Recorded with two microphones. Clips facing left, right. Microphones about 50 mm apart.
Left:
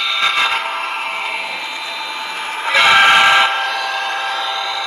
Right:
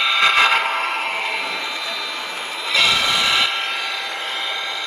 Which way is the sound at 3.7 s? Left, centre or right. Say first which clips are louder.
Left 6 dB; left.